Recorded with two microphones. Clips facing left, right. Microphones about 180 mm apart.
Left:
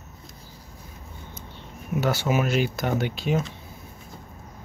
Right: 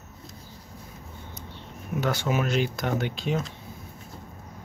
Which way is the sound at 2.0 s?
5° left (ahead or behind).